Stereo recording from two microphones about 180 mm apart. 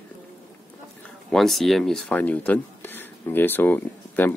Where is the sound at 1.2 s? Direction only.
Centre (ahead or behind).